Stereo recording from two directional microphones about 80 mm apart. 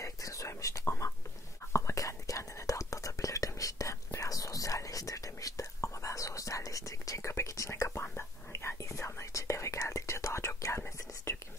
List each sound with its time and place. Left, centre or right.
0.0 s whispering: left
8.0 s whispering: left